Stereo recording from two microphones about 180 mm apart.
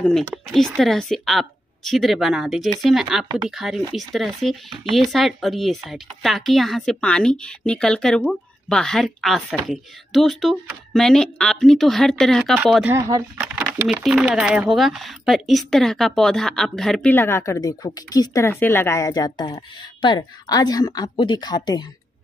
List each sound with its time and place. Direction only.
0.5 s speech: 5° left (ahead or behind)
12.9 s speech: 15° right (ahead or behind)
13.6 s speech: 5° right (ahead or behind); by 21.8 s 25° left (ahead or behind)